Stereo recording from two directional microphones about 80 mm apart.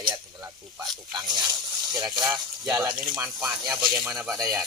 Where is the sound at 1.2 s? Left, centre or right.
Right.